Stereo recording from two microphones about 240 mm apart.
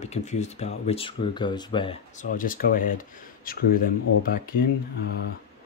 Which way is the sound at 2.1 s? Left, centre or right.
Left.